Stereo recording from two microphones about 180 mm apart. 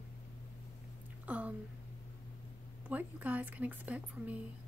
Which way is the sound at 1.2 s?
10° right (ahead or behind).